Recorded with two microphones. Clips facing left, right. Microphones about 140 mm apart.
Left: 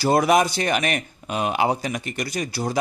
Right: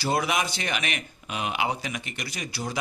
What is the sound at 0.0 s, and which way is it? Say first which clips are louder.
Speech: left 8 dB; 45° left (ahead or behind).